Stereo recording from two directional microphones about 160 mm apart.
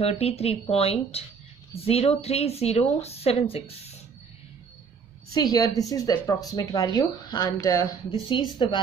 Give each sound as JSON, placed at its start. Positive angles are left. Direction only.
{"t": 0.0, "sound": "speech", "side_deg": 40}
{"t": 5.3, "sound": "a woman's voice", "side_deg": 25}